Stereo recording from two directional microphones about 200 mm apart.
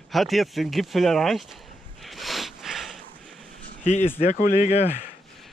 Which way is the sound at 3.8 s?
40° left (ahead or behind).